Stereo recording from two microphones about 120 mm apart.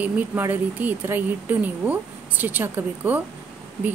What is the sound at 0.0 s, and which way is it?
A woman's voice, 15° right (ahead or behind).